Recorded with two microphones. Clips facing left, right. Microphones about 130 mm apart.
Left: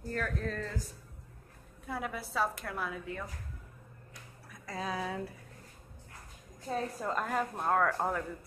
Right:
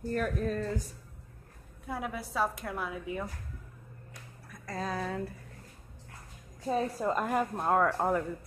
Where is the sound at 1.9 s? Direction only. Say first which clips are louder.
Right 1 dB; 5° right (ahead or behind).